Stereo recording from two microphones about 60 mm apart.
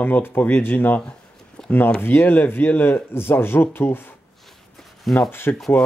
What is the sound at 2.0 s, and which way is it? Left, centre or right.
A man's voice, left.